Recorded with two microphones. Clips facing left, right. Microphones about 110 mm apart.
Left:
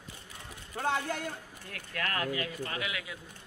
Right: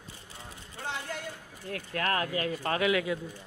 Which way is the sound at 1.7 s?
35° right (ahead or behind).